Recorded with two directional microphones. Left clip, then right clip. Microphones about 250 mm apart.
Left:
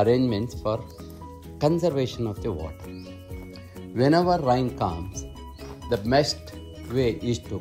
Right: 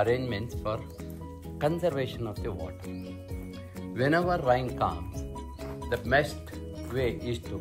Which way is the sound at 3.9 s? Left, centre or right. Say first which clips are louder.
Left 5 dB; centre.